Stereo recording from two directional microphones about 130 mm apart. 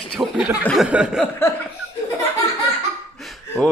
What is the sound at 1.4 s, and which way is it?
Chuckle, 20° left (ahead or behind).